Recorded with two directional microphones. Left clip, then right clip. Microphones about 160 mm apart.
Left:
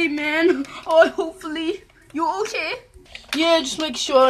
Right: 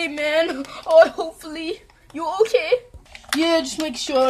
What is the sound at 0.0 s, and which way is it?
A woman's voice, 45° right (ahead or behind).